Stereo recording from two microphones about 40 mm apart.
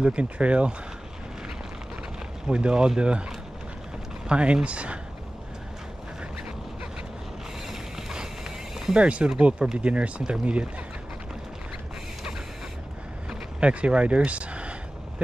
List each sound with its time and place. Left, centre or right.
0.0 s speech: right
2.4 s speech: right
4.3 s speech: right
7.7 s a sound: centre
8.9 s speech: right
13.6 s a sound: right